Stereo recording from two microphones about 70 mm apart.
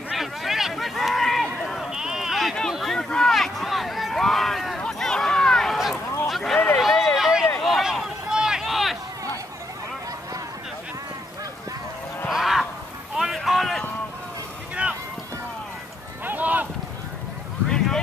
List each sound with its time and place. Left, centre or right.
0.1 s run: centre
1.9 s sheep: centre
2.7 s a sound: centre
12.3 s honk: centre
13.1 s a sound: centre
16.3 s run: right
17.6 s vehicle: centre